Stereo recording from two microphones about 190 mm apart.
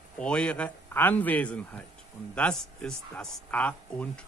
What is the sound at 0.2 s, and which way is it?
Speech, 5° left (ahead or behind).